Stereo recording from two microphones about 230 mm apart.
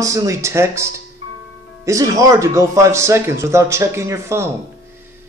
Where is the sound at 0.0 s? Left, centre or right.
Centre.